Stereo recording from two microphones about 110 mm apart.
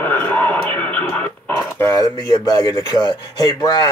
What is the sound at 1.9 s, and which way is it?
A man's voice, 40° left (ahead or behind).